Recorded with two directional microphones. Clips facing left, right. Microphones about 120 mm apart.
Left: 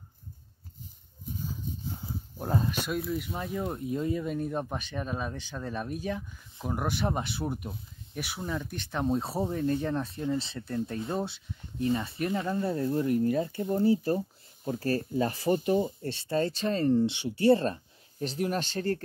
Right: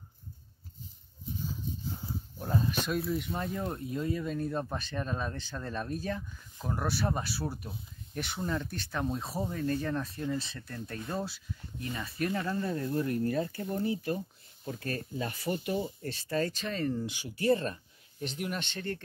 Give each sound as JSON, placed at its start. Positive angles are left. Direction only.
{"t": 2.3, "sound": "a sound", "side_deg": 45}
{"t": 2.9, "sound": "speech", "side_deg": 0}
{"t": 3.8, "sound": "speech", "side_deg": 20}